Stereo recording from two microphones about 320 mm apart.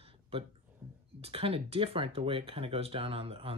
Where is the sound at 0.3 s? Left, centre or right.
Centre.